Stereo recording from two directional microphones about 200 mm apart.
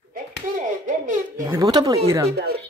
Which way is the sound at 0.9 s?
40° right (ahead or behind).